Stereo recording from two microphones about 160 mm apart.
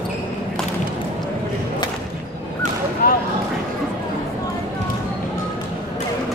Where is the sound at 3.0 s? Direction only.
70° left (ahead or behind).